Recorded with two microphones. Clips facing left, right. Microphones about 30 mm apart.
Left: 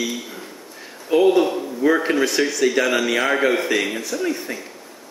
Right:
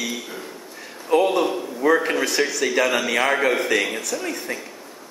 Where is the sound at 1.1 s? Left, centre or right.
Centre.